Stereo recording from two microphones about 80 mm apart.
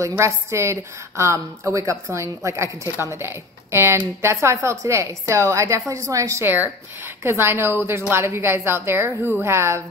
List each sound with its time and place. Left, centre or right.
0.2 s a woman's voice: right
6.4 s a woman's voice: right